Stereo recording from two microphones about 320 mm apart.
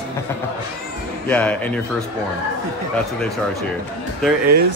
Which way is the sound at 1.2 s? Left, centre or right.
Centre.